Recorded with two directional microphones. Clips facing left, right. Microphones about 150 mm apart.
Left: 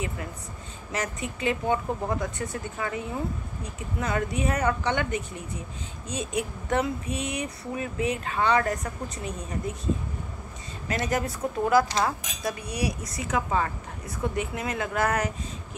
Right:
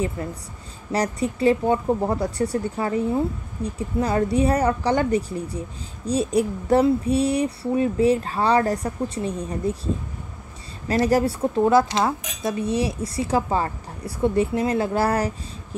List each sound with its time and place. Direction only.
0.2 s speech: 35° right (ahead or behind)
10.9 s speech: 35° right (ahead or behind)